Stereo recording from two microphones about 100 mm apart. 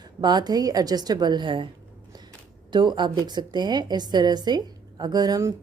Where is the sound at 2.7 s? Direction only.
50° right (ahead or behind).